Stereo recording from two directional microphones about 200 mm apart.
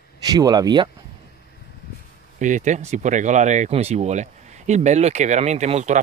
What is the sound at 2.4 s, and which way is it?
Speech, 40° right (ahead or behind).